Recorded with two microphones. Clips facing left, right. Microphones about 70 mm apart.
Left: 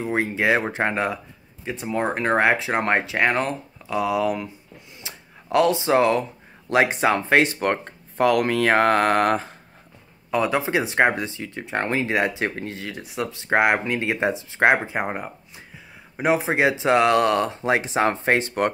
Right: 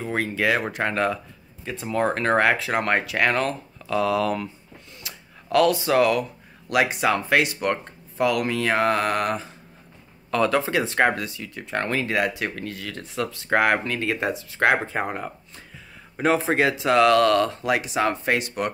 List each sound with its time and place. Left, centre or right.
0.0 s speech: centre
5.0 s a sound: left
6.7 s speech: left
10.3 s speech: centre
12.9 s speech: centre; by 18.7 s left